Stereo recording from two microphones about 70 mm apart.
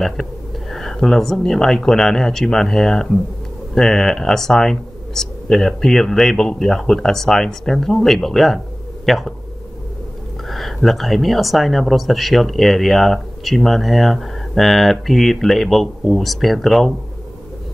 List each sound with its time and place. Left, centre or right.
0.0 s speech: centre
10.5 s speech: centre